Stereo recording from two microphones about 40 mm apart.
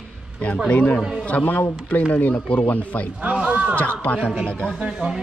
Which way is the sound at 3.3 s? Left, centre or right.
Right.